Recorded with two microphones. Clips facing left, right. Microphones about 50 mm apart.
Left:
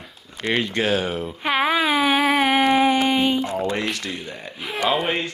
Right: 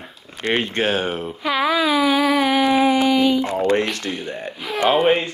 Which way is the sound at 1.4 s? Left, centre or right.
Left.